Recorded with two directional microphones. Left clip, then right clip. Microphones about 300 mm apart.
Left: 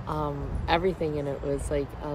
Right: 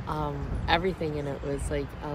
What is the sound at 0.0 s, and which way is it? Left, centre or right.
Speech, centre.